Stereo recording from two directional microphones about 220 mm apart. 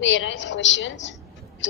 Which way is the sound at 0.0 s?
55° left (ahead or behind).